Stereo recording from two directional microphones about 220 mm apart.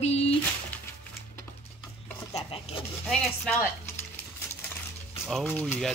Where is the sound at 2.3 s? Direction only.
25° left (ahead or behind).